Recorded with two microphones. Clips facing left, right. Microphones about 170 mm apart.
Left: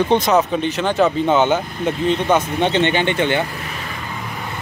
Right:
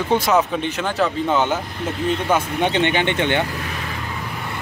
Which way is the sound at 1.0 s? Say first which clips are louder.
Left 5 dB; 5° left (ahead or behind).